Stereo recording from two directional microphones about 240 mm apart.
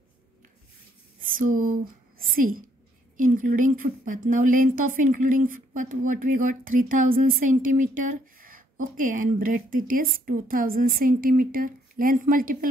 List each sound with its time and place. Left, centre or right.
1.2 s a woman's voice: right